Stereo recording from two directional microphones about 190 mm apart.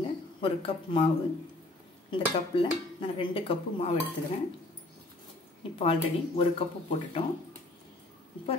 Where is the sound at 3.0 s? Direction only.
30° left (ahead or behind).